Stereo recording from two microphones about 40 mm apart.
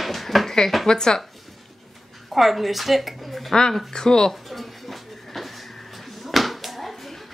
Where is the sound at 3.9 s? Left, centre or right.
Centre.